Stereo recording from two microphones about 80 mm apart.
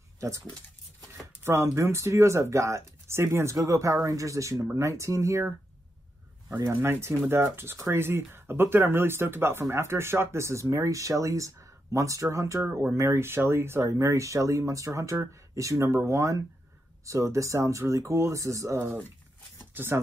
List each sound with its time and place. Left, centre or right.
1.1 s speech: right
6.6 s speech: right
19.7 s speech: right